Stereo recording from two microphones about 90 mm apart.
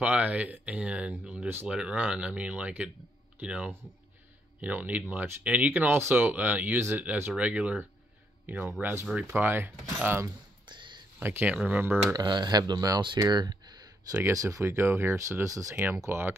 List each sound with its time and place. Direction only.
0.0 s speech: 15° right (ahead or behind)
10.7 s a sound: 60° right (ahead or behind)
11.1 s speech: 20° right (ahead or behind)
12.1 s speech: 50° right (ahead or behind)
13.3 s a sound: 55° right (ahead or behind)
14.3 s speech: 35° right (ahead or behind)
15.7 s speech: 20° right (ahead or behind)